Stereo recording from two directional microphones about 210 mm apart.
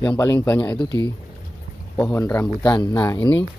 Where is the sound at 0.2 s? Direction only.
15° left (ahead or behind).